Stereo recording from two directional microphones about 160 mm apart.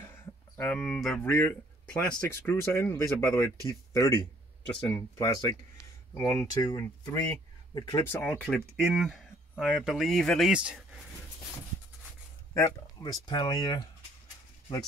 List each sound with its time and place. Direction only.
0.0 s speech: 10° left (ahead or behind)
8.1 s speech: 10° left (ahead or behind)
12.5 s speech: 25° left (ahead or behind)